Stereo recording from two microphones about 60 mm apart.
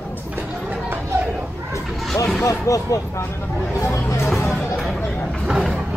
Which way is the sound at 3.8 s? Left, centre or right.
Left.